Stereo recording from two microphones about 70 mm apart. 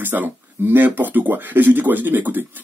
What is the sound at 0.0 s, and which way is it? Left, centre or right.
Speech, right.